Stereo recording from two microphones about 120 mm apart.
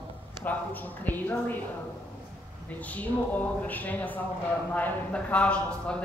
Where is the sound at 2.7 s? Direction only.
10° left (ahead or behind).